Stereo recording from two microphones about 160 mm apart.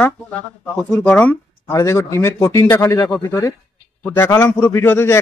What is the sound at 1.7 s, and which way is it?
Speech, 20° left (ahead or behind).